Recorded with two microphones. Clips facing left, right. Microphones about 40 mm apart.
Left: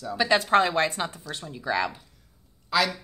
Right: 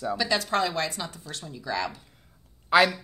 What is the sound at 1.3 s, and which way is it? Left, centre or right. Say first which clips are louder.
Speech: left 1 dB; left.